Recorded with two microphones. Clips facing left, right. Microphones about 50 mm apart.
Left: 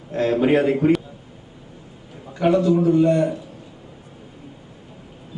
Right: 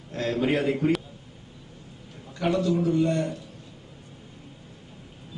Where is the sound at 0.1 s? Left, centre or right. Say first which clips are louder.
Left 7 dB; centre.